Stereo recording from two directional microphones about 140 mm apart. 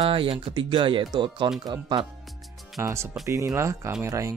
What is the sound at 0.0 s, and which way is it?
Speech, 40° right (ahead or behind).